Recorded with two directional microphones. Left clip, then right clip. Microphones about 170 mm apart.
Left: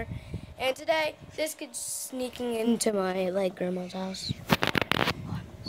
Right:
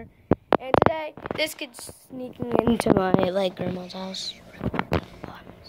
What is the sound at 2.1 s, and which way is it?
A woman's voice, 5° left (ahead or behind).